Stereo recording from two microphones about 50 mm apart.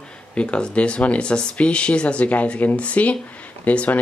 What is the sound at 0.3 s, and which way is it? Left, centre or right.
Speech, left.